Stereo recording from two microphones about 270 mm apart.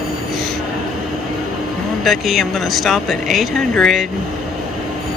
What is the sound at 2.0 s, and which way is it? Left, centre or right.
Speech, centre.